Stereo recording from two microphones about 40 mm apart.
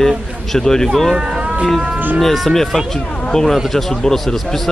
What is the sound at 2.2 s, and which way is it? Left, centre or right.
A man's voice, centre.